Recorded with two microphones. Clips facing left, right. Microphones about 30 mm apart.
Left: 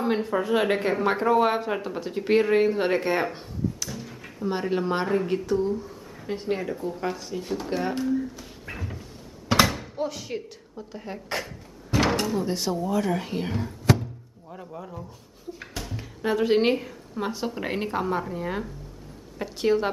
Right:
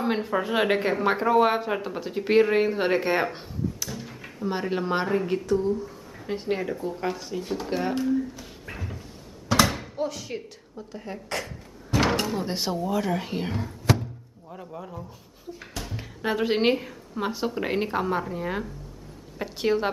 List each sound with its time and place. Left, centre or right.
0.0 s speech: centre
6.2 s speech: centre
9.5 s thunk: left
9.9 s a sound: centre
12.2 s speech: centre
12.7 s a woman's voice: centre